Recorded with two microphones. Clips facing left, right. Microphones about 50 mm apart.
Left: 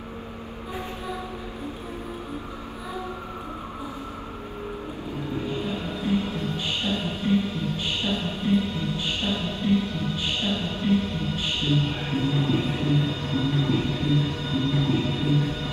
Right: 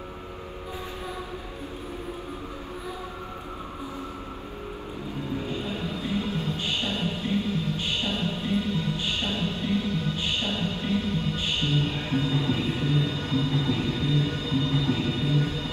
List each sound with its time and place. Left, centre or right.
5.5 s a sound: left
8.5 s music: left
11.7 s speech: left
12.4 s music: left